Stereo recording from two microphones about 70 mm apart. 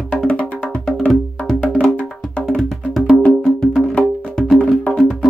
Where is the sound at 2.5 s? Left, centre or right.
Centre.